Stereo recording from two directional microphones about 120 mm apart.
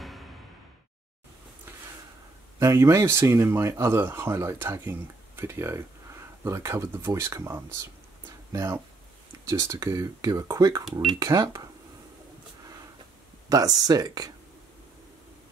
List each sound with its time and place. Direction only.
2.6 s speech: 25° right (ahead or behind)
10.9 s speech: centre (ahead or behind)
11.1 s speech: 30° right (ahead or behind)
13.5 s speech: 30° right (ahead or behind)